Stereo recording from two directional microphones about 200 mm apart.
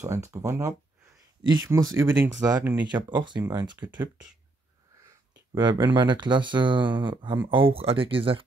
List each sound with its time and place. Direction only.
0.0 s speech: 15° right (ahead or behind)
5.5 s speech: 20° right (ahead or behind)